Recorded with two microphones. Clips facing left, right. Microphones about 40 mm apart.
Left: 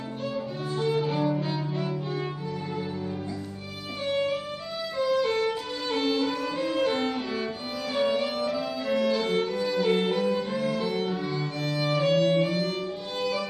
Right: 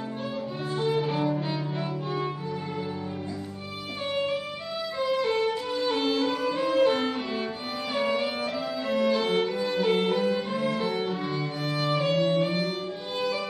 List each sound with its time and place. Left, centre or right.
0.7 s violin: centre
4.9 s music: centre
5.8 s violin: centre
7.9 s music: centre
8.6 s violin: centre
10.3 s music: centre
11.6 s violin: centre